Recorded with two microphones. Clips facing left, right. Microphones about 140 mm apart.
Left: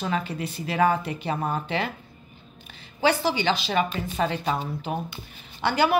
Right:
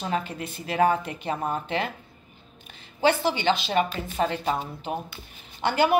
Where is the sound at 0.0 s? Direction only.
40° right (ahead or behind).